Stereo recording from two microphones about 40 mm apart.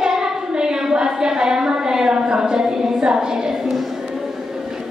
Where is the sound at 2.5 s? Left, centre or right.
Centre.